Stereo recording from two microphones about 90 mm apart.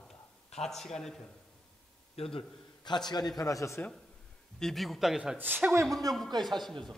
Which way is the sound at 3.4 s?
40° left (ahead or behind).